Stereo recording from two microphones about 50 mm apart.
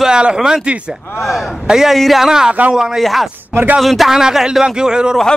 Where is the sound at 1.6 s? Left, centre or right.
Centre.